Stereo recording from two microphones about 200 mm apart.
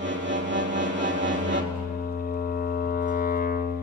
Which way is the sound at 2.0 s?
45° left (ahead or behind).